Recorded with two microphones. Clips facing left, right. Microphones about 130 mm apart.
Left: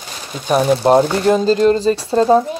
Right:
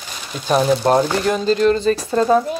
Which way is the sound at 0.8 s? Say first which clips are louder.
Left 4 dB; 25° left (ahead or behind).